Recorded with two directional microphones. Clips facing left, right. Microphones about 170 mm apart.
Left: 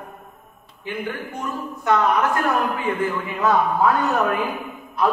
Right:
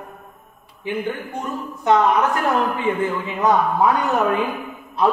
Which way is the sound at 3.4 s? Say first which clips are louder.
Right 1 dB; 20° right (ahead or behind).